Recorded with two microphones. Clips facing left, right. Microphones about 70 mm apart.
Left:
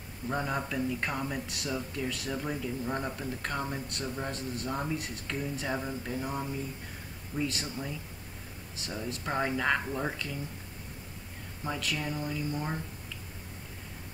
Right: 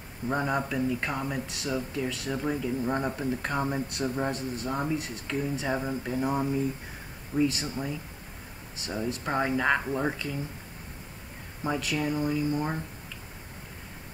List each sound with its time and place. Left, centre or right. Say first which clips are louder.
0.3 s speech: right 4 dB; centre
7.3 s speech: right 7 dB; centre
7.6 s speech: right 4 dB; right
8.9 s speech: right 4 dB; centre
11.6 s speech: right 5 dB; centre